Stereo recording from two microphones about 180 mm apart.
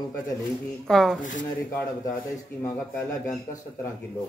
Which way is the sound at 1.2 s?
45° left (ahead or behind).